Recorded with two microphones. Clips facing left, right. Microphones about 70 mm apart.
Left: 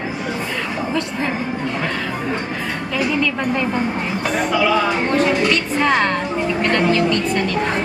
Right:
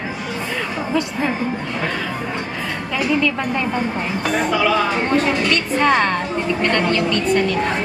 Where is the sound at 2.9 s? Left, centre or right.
Centre.